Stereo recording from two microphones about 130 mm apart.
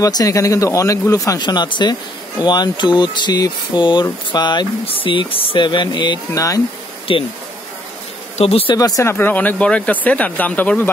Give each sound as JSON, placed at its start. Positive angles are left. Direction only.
{"t": 0.0, "sound": "speech", "side_deg": 25}
{"t": 7.1, "sound": "speech", "side_deg": 40}
{"t": 8.4, "sound": "speech", "side_deg": 50}
{"t": 8.7, "sound": "speech", "side_deg": 25}
{"t": 9.1, "sound": "speech", "side_deg": 15}